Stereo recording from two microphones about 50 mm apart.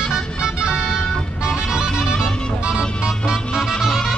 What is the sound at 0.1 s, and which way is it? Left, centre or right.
Music, centre.